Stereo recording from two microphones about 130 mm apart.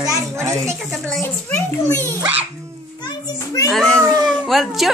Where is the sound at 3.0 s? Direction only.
25° left (ahead or behind).